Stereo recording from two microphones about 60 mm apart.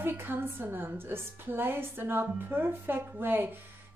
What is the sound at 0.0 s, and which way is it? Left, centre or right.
A woman's voice, right.